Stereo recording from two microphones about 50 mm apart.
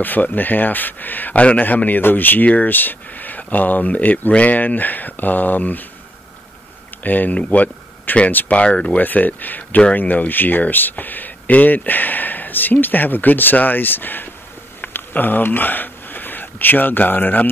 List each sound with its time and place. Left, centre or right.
0.0 s speech: left
7.0 s speech: left
8.5 s speech: centre
9.0 s speech: left
14.8 s a sound: left